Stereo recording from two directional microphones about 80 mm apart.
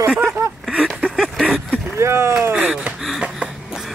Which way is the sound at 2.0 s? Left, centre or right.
Right.